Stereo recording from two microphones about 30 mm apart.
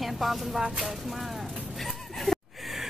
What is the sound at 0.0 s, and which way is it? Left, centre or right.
Speech, centre.